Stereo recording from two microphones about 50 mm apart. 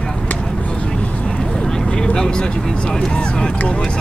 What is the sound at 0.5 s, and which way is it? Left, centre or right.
Vehicle, left.